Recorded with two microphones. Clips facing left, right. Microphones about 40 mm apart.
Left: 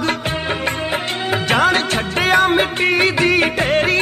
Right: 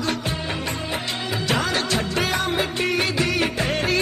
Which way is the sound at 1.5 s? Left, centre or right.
Left.